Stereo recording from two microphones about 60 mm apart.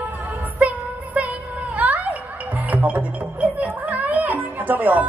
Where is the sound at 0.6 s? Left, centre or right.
Right.